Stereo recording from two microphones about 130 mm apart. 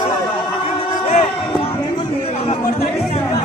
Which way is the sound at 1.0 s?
50° left (ahead or behind).